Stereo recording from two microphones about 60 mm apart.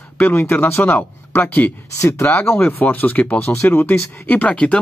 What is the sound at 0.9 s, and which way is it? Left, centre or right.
Speech, left.